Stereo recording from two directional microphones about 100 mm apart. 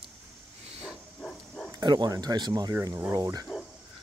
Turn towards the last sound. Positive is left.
turn(degrees=-35)  # may be behind; listen again after turning